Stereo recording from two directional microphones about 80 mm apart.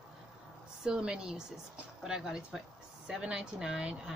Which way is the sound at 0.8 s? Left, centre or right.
Centre.